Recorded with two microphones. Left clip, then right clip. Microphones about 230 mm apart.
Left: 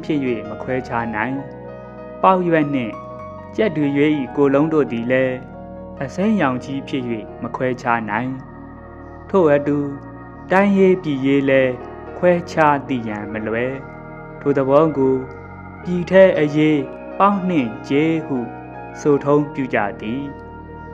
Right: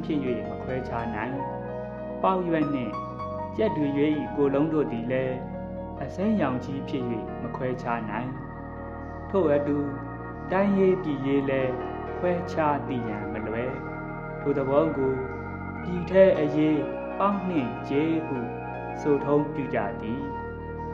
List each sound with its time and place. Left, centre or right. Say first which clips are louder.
0.0 s speech: left 7 dB; left
9.3 s speech: left 8 dB; left